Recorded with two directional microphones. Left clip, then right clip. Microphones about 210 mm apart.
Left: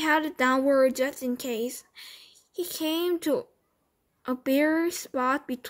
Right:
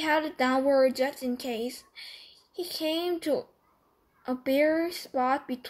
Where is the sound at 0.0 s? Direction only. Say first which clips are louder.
Left 2 dB; 45° left (ahead or behind).